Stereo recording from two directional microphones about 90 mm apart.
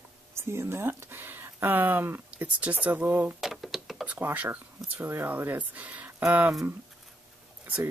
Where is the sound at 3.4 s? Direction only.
Centre (ahead or behind).